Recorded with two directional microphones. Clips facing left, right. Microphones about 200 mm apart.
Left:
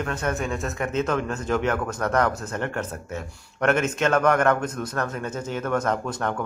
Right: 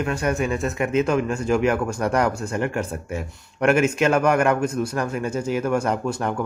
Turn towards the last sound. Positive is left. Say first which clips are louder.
# right 2 dB
turn(degrees=-10)  # may be behind; listen again after turning